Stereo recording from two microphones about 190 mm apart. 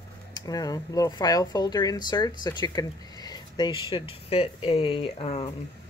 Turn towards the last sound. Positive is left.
turn(degrees=30)  # may be behind; listen again after turning